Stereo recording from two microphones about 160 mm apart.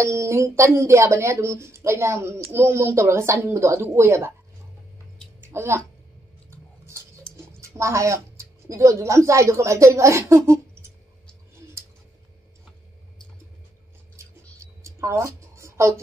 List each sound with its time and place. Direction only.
0.0 s speech: 15° right (ahead or behind)
5.5 s a woman's voice: 15° right (ahead or behind)
7.3 s speech: 15° right (ahead or behind)
14.8 s a sound: 20° right (ahead or behind)